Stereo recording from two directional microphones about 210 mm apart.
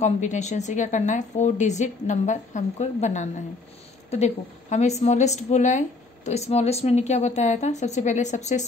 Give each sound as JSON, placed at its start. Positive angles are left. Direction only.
{"t": 0.0, "sound": "a woman's voice", "side_deg": 35}